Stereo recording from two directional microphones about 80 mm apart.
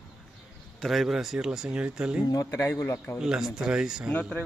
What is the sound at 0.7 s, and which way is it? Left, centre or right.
Speech, centre.